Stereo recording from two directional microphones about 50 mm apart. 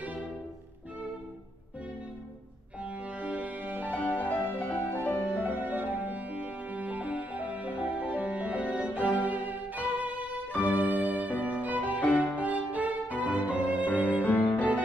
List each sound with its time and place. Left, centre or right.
0.0 s music: right
2.8 s music: right
3.9 s music: left
5.0 s music: right
10.5 s music: left
10.9 s music: right
11.4 s violin: right
12.0 s music: left
12.4 s music: right
13.8 s music: left